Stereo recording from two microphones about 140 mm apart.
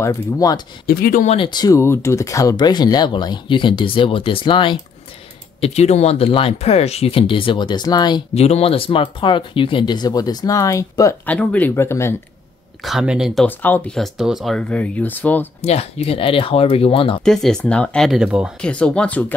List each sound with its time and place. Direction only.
0.0 s speech: 25° left (ahead or behind)
0.8 s speech: 90° left
1.2 s speech: 45° left (ahead or behind)
1.5 s speech: 25° left (ahead or behind)
5.6 s speech: 50° left (ahead or behind); by 8.2 s 30° left (ahead or behind)
8.4 s speech: 45° left (ahead or behind); by 11.1 s 20° left (ahead or behind)
11.2 s speech: 10° left (ahead or behind)
12.8 s speech: 5° right (ahead or behind)
13.5 s speech: 15° left (ahead or behind)
13.9 s speech: centre (ahead or behind)
15.6 s speech: 50° left (ahead or behind)
17.2 s speech: 5° left (ahead or behind)
18.6 s speech: 5° left (ahead or behind)